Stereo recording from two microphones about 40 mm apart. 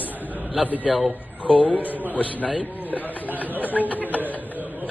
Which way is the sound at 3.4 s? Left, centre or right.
Left.